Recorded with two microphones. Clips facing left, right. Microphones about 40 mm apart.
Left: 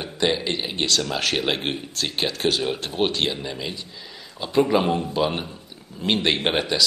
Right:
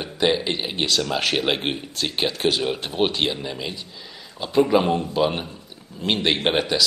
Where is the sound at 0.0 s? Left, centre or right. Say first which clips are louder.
Right 2 dB; centre.